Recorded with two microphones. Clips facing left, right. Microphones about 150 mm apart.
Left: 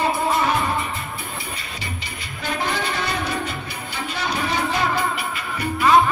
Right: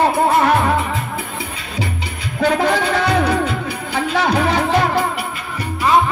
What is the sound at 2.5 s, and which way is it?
Music, 85° right.